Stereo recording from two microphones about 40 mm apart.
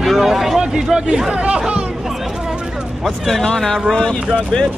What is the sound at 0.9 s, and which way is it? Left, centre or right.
Speech, centre.